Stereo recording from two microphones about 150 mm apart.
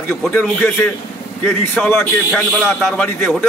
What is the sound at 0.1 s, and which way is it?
Speech, 10° left (ahead or behind).